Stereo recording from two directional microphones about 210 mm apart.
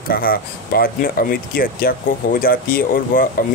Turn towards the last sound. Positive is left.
turn(degrees=40)  # may be behind; listen again after turning